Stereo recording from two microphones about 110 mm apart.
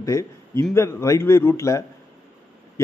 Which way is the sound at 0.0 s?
25° left (ahead or behind).